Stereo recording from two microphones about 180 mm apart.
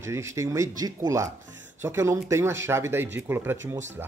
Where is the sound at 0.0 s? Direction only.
15° right (ahead or behind).